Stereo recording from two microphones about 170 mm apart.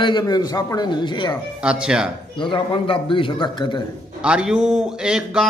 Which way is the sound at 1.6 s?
5° right (ahead or behind).